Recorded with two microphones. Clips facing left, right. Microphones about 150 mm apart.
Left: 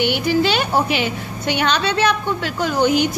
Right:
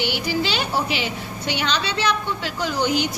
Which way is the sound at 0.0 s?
55° left (ahead or behind).